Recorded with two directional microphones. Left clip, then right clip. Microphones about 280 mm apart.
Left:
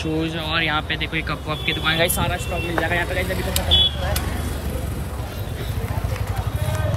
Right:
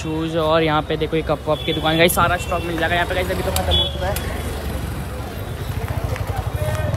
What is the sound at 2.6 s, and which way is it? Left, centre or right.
Speech, centre.